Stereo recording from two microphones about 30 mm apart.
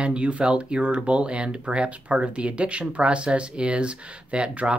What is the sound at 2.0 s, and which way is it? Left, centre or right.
Speech, right.